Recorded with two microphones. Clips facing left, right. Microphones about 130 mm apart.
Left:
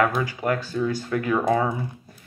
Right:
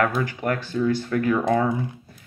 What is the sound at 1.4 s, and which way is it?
Speech, 30° left (ahead or behind).